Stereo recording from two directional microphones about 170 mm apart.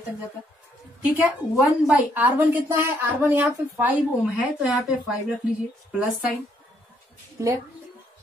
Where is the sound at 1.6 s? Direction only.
5° right (ahead or behind).